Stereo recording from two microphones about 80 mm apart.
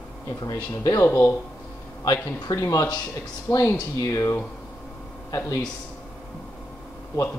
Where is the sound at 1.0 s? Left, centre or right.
Left.